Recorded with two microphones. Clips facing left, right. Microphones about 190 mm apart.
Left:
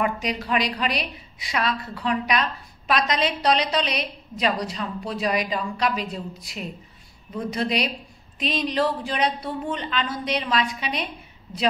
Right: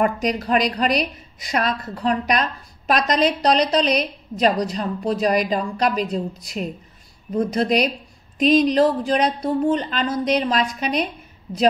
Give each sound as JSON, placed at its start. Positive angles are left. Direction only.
{"t": 0.0, "sound": "a woman's voice", "side_deg": -45}
{"t": 7.3, "sound": "a woman's voice", "side_deg": -45}